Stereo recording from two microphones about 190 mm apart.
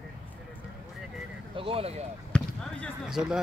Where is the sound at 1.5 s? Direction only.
30° right (ahead or behind).